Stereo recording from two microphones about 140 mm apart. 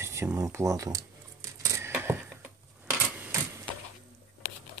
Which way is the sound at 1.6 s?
20° right (ahead or behind).